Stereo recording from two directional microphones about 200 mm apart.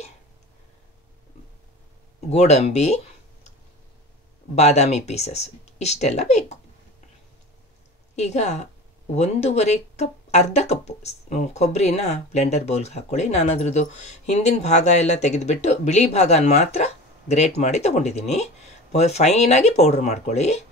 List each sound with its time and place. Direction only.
2.2 s speech: 35° left (ahead or behind)
4.6 s speech: 35° left (ahead or behind)
8.2 s speech: 35° left (ahead or behind)